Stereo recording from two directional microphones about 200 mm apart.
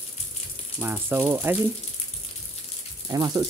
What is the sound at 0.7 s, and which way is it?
Speech, 10° right (ahead or behind).